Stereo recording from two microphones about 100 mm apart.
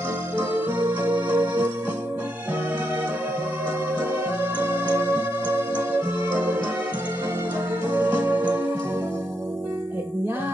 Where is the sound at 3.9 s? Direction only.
25° right (ahead or behind).